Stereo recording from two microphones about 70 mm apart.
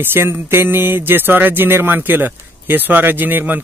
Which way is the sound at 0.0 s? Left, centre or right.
Right.